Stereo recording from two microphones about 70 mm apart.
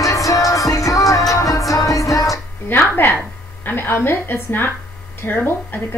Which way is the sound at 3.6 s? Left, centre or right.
Left.